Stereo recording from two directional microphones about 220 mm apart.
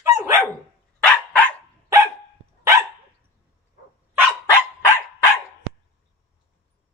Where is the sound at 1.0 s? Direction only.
5° left (ahead or behind).